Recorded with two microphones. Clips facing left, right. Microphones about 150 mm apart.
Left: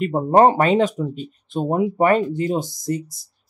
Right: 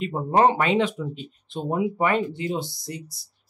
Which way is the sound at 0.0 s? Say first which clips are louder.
Left 5 dB; 50° left (ahead or behind).